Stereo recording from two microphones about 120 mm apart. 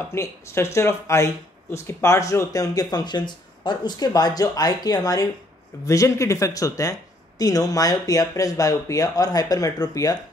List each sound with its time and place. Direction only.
0.1 s speech: 25° left (ahead or behind)